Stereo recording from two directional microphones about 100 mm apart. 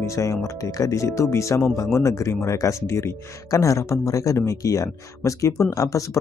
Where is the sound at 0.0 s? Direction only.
30° left (ahead or behind).